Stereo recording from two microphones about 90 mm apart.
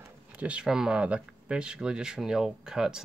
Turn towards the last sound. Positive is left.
turn(degrees=-5)  # may be behind; listen again after turning